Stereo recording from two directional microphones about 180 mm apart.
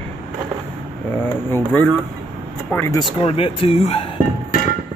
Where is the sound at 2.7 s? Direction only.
15° left (ahead or behind).